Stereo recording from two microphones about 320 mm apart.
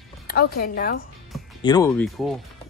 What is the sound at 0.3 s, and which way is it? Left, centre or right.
Speech, left.